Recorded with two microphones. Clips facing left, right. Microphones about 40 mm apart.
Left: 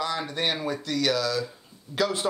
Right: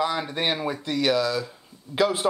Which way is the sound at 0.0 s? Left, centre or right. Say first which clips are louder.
Right 3 dB; centre.